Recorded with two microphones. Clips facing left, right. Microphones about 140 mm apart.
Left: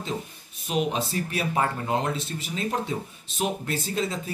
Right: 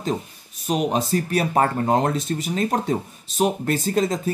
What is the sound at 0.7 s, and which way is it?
Speech, 40° right (ahead or behind).